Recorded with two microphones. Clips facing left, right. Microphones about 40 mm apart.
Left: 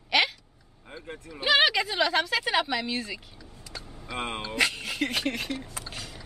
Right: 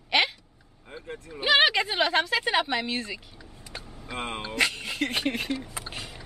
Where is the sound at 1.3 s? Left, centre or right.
Centre.